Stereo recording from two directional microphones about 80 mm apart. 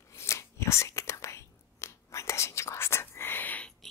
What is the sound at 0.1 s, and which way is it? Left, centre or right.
Whispering, left.